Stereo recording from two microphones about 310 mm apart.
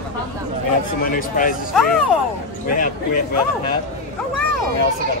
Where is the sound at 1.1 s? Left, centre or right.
Left.